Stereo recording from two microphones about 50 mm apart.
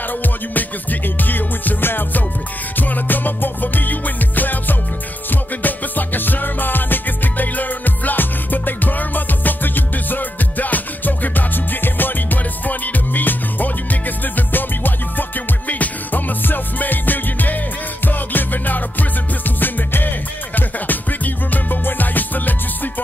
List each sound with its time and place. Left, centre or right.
0.2 s music: left